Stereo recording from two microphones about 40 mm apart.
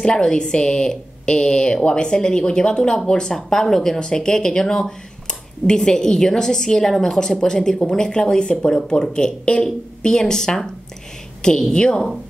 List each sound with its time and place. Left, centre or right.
0.0 s a woman's voice: centre